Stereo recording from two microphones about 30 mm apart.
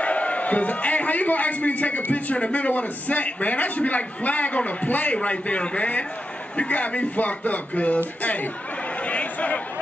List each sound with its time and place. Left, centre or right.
0.0 s a man's voice: left
2.3 s a man's voice: left
5.1 s a man's voice: left
9.0 s chatter: left